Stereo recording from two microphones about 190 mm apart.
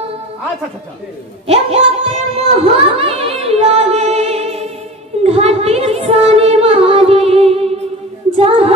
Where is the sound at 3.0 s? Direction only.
30° right (ahead or behind).